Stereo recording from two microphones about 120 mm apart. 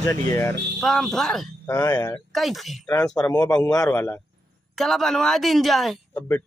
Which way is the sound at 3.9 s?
15° left (ahead or behind).